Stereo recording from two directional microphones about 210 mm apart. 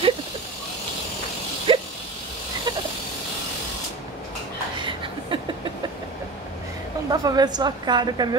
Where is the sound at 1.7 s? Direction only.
25° right (ahead or behind).